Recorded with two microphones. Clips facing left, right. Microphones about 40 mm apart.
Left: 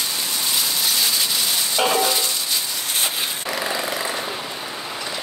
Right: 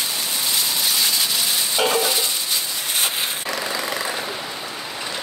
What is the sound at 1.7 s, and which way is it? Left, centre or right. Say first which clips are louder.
Music: left 1 dB; centre.